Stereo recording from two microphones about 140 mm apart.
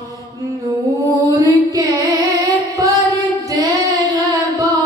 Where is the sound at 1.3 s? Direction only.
25° right (ahead or behind).